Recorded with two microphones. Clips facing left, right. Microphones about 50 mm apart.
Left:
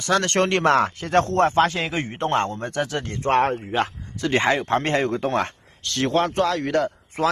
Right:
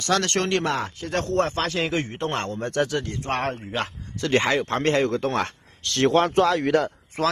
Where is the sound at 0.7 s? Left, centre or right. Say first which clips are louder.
Left 7 dB; left.